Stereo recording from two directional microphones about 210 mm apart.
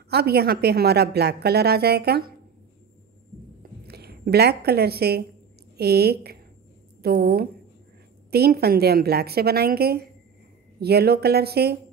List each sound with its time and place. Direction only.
0.1 s a woman's voice: 50° right (ahead or behind)
3.8 s a woman's voice: 50° right (ahead or behind)